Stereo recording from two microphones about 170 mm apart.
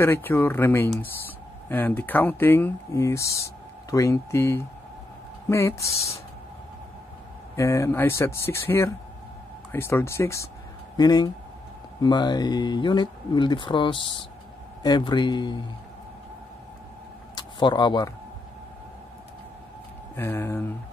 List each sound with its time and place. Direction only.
0.0 s speech: 15° left (ahead or behind)
7.5 s speech: 15° left (ahead or behind)
17.4 s speech: 25° left (ahead or behind)
20.2 s speech: 15° left (ahead or behind)